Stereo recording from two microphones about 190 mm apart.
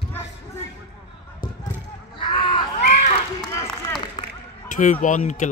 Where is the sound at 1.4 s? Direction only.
25° left (ahead or behind).